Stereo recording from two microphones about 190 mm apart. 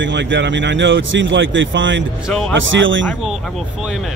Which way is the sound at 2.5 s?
80° right.